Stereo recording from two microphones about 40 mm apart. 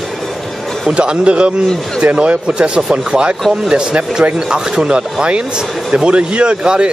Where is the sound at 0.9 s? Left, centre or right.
Right.